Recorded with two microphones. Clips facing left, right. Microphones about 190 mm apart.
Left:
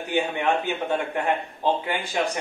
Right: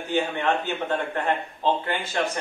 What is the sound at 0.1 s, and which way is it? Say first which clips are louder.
A man's voice: even; 15° left (ahead or behind).